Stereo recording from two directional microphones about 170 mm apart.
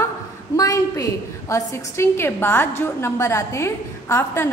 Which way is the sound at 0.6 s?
20° left (ahead or behind).